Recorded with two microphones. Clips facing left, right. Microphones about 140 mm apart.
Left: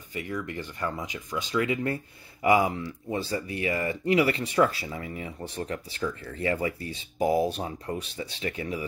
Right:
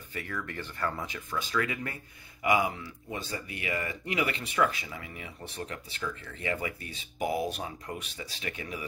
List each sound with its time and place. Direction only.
0.1 s speech: 15° left (ahead or behind)